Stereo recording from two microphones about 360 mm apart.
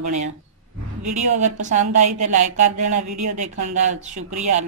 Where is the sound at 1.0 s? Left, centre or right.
Centre.